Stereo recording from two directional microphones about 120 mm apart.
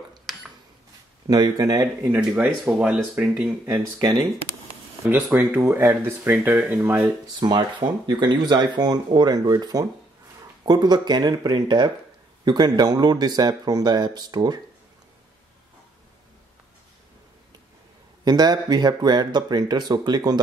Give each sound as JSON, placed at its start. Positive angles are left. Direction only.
{"t": 0.3, "sound": "a sound", "side_deg": 0}
{"t": 1.3, "sound": "speech", "side_deg": -35}
{"t": 2.0, "sound": "speech", "side_deg": -15}
{"t": 4.0, "sound": "speech", "side_deg": -35}
{"t": 5.0, "sound": "speech", "side_deg": -20}
{"t": 7.3, "sound": "speech", "side_deg": -35}
{"t": 18.2, "sound": "speech", "side_deg": -35}